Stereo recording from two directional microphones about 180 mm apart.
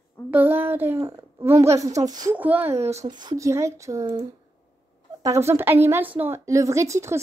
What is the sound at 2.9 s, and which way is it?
A woman's voice, 20° right (ahead or behind).